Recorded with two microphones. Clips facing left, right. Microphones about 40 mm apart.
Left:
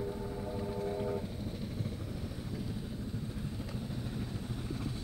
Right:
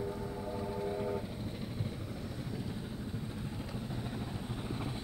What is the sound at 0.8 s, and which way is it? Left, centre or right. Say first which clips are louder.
Train: even; centre.